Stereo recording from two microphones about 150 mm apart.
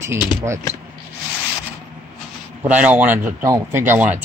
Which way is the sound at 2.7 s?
10° right (ahead or behind).